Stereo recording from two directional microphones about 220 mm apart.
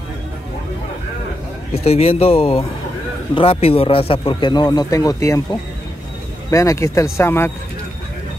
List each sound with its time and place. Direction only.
1.7 s speech: 25° left (ahead or behind); by 7.5 s 10° left (ahead or behind)